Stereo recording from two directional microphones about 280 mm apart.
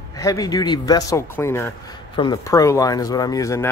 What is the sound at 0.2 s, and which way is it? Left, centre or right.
Speech, centre.